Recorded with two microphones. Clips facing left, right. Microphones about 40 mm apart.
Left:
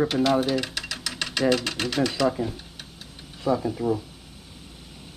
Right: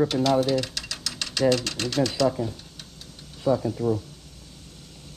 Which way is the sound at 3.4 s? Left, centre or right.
Centre.